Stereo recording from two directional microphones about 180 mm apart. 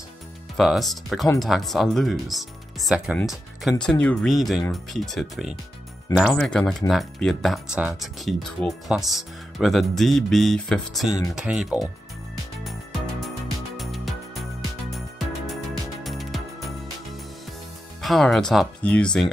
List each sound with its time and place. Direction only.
0.6 s speech: centre (ahead or behind)
6.1 s speech: 20° left (ahead or behind)
6.4 s speech: 5° left (ahead or behind)
13.7 s music: centre (ahead or behind)
18.0 s speech: centre (ahead or behind)